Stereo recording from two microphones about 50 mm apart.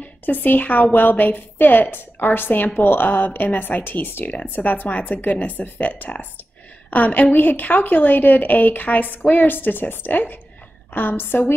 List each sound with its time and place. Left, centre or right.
0.2 s a woman's voice: left
4.6 s a woman's voice: left